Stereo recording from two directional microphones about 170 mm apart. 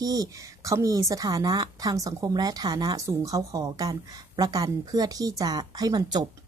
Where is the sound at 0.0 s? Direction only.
20° right (ahead or behind).